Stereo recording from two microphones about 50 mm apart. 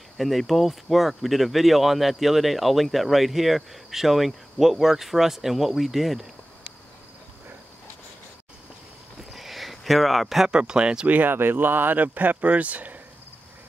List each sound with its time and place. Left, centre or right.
0.2 s speech: centre
9.2 s a sound: centre
10.5 s speech: centre
11.1 s speech: right
11.3 s speech: right